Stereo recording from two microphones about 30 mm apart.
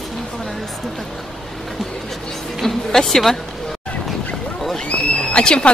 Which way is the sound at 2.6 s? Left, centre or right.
Centre.